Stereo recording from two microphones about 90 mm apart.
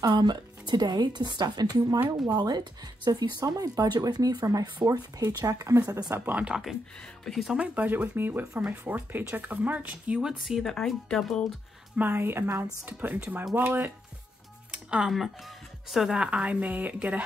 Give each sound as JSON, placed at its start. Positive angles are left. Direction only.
{"t": 0.0, "sound": "speech", "side_deg": -50}
{"t": 6.1, "sound": "speech", "side_deg": -20}
{"t": 6.4, "sound": "speech", "side_deg": -5}
{"t": 12.0, "sound": "speech", "side_deg": -25}